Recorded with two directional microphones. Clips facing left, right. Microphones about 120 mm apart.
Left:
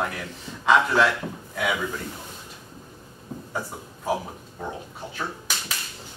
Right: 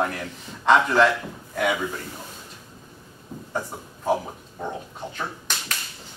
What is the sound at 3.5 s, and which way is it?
Speech, centre (ahead or behind).